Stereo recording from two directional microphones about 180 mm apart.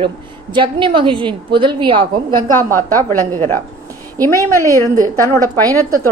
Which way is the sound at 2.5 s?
15° left (ahead or behind).